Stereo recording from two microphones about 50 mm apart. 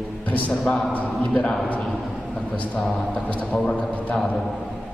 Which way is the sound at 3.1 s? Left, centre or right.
Left.